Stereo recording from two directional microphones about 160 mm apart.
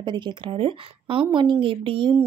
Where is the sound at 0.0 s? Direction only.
30° right (ahead or behind).